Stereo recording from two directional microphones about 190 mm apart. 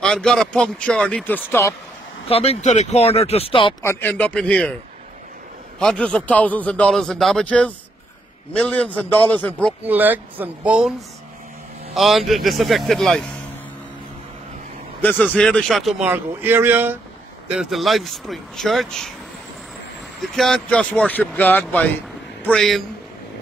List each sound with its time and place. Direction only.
0.0 s a man's voice: 5° left (ahead or behind)
2.2 s speech: 30° left (ahead or behind)
3.8 s a man's voice: 10° left (ahead or behind)
5.8 s a man's voice: 5° left (ahead or behind)
9.8 s a man's voice: 10° right (ahead or behind)
15.0 s a man's voice: 10° left (ahead or behind)
20.2 s a man's voice: centre (ahead or behind)